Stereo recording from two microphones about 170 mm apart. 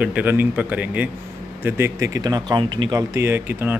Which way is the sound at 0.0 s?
10° right (ahead or behind).